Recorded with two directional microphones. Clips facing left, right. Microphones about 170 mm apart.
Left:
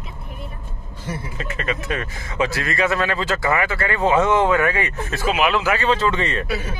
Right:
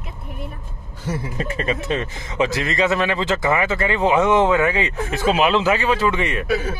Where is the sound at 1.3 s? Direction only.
35° right (ahead or behind).